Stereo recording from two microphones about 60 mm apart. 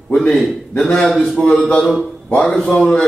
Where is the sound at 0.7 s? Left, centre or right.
Centre.